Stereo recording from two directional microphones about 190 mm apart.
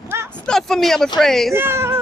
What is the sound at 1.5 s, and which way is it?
Speech, 10° right (ahead or behind).